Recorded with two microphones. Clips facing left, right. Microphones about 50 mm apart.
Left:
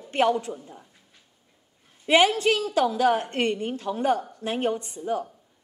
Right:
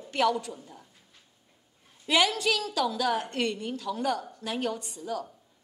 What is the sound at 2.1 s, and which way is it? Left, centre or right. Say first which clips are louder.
A woman's voice: left 6 dB; left.